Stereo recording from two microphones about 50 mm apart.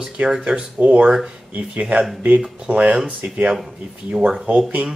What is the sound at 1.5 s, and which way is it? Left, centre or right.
Speech, right.